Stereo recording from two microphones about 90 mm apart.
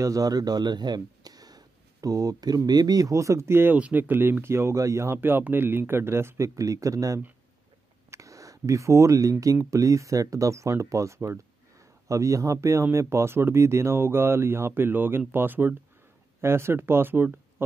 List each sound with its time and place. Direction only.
0.0 s speech: 40° right (ahead or behind)
3.7 s speech: 15° right (ahead or behind)